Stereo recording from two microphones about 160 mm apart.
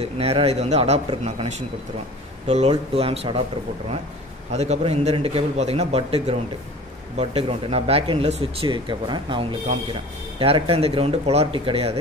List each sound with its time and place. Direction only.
0.0 s speech: 40° right (ahead or behind)
4.5 s speech: 45° right (ahead or behind)